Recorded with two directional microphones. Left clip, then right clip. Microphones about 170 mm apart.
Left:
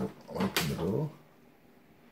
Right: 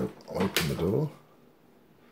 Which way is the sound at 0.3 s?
35° right (ahead or behind).